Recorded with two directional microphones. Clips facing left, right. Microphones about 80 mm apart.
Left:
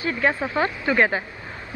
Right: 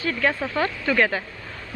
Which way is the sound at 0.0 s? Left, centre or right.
Left.